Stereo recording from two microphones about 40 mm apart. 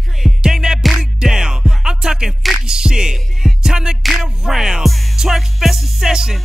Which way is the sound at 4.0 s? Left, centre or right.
Centre.